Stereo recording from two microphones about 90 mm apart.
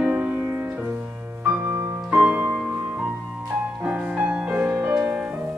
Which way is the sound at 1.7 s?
15° right (ahead or behind).